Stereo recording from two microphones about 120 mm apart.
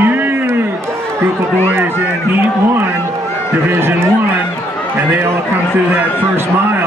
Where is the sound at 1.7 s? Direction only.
20° right (ahead or behind).